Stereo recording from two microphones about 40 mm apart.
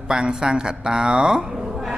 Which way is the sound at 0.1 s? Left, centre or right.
Centre.